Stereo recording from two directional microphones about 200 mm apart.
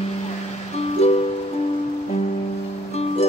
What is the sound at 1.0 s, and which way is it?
Music, 30° left (ahead or behind).